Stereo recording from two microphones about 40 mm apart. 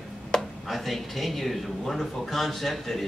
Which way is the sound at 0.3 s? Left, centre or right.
Centre.